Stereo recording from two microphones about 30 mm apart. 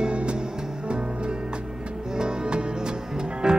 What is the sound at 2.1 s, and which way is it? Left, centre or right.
Music, right.